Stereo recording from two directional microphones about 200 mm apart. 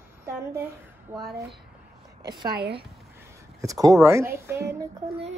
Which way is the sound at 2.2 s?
20° right (ahead or behind).